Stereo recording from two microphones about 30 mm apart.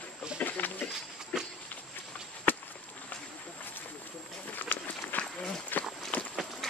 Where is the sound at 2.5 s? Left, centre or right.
Left.